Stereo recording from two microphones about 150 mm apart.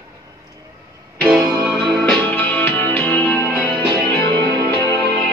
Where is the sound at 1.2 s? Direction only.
5° right (ahead or behind).